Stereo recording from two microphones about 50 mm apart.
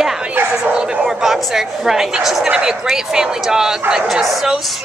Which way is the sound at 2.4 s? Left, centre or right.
Centre.